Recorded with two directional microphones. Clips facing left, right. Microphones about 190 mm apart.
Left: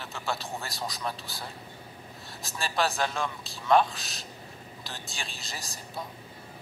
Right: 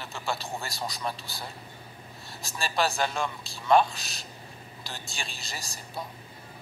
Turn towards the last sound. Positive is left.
turn(degrees=0)  # may be behind; listen again after turning